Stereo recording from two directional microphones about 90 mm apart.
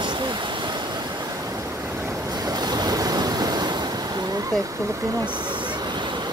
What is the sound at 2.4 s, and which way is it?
Waves, 50° right (ahead or behind).